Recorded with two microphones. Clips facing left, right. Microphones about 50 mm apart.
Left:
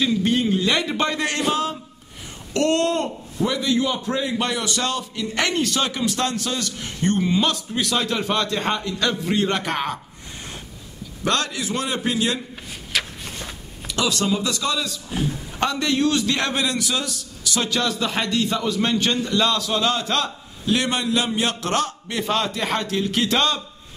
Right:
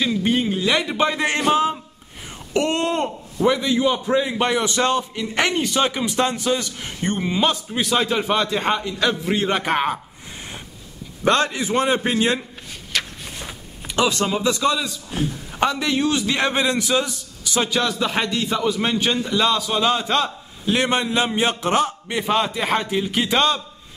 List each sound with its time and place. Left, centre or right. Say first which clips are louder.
0.0 s a man's voice: even; centre
1.2 s a man's voice: right 4 dB; right
11.2 s a man's voice: right 4 dB; right
12.9 s walk: even; centre
13.8 s a man's voice: right 2 dB; right
15.0 s a man's voice: even; centre
17.7 s a man's voice: right 1 dB; centre
20.8 s a man's voice: right 2 dB; right